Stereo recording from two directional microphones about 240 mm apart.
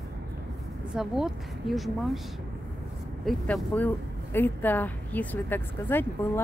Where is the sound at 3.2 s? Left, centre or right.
Centre.